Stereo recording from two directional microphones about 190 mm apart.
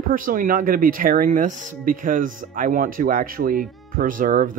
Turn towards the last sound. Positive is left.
turn(degrees=-45)  # may be behind; listen again after turning